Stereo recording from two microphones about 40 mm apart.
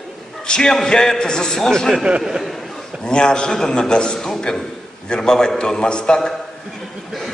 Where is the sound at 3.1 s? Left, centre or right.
Left.